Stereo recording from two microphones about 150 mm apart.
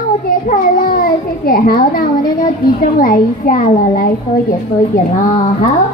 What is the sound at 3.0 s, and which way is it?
A child's voice, 65° left (ahead or behind).